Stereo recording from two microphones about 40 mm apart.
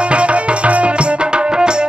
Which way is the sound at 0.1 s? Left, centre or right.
Right.